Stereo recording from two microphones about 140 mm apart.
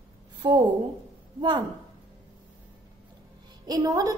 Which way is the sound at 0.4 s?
35° right (ahead or behind).